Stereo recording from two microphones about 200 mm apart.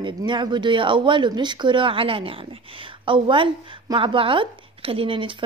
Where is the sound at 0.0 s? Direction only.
25° right (ahead or behind).